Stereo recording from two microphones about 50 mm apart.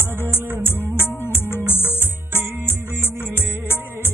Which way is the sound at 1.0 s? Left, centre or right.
Left.